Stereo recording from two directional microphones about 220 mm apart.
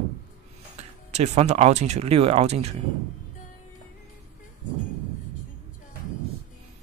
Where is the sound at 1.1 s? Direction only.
30° right (ahead or behind).